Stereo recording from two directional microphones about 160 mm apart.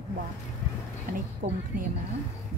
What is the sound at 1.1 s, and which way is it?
Speech, 65° right (ahead or behind).